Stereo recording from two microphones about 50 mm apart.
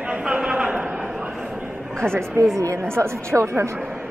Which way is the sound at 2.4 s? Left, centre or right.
Right.